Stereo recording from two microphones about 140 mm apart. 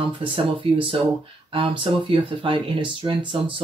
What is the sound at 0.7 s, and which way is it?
Speech, 40° right (ahead or behind).